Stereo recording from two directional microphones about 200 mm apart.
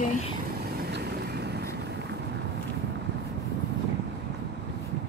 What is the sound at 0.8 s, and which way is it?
Boat, 55° right (ahead or behind).